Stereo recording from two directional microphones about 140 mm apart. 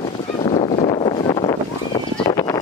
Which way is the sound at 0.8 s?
35° left (ahead or behind).